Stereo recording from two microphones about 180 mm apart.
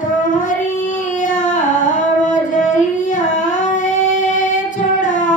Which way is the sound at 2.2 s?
45° left (ahead or behind).